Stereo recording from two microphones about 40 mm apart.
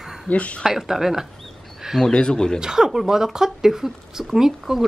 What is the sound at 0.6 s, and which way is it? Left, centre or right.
Speech, centre.